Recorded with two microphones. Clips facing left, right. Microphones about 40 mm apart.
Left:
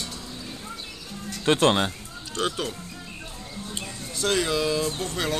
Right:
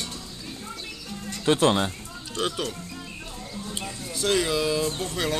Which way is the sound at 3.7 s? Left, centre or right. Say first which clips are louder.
Right 1 dB; centre.